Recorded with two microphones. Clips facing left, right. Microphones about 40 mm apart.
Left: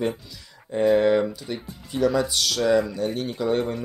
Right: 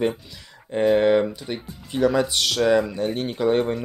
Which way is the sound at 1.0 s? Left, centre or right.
Right.